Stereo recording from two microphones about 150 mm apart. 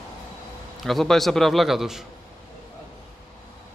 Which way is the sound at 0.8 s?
Centre (ahead or behind).